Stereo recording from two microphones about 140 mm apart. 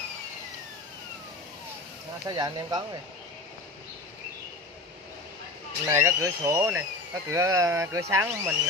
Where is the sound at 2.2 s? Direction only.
30° right (ahead or behind).